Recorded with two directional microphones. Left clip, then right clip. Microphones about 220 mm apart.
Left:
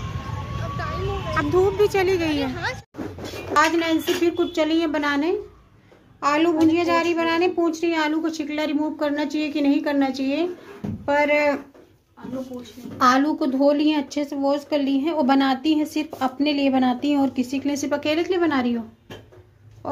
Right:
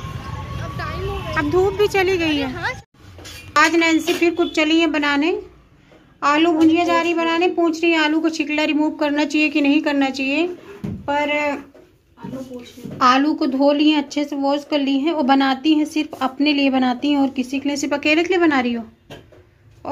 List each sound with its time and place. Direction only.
1.3 s a woman's voice: centre (ahead or behind)
2.5 s speech: 15° left (ahead or behind)
3.5 s a woman's voice: 5° left (ahead or behind)
11.1 s speech: 20° left (ahead or behind)
12.9 s a woman's voice: 5° left (ahead or behind)